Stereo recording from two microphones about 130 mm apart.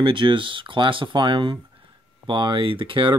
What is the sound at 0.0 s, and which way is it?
Speech, 40° right (ahead or behind).